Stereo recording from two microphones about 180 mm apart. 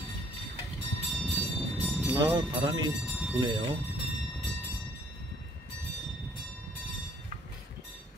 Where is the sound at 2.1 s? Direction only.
20° right (ahead or behind).